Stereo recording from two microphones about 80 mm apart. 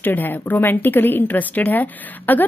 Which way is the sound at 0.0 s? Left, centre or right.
Left.